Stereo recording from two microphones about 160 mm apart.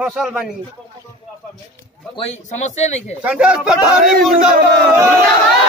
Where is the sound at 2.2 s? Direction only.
45° left (ahead or behind).